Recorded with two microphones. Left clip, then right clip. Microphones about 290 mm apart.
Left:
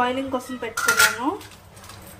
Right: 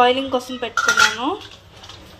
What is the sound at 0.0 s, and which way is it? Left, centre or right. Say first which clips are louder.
Speech: right 7 dB; centre.